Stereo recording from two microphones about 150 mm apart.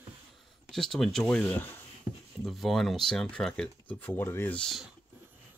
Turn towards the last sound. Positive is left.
turn(degrees=5)  # may be behind; listen again after turning